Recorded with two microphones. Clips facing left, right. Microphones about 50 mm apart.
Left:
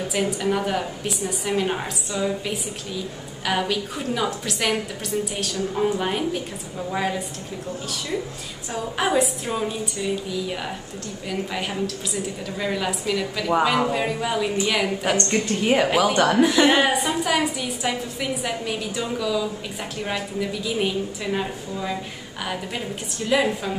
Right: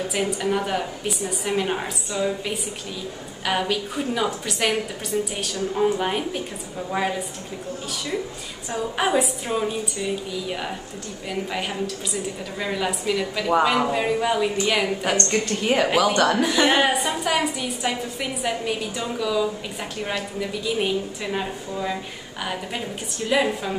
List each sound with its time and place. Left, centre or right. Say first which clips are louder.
0.1 s a woman's voice: left 2 dB; centre
8.9 s a woman's voice: left 1 dB; centre
11.2 s a woman's voice: even; centre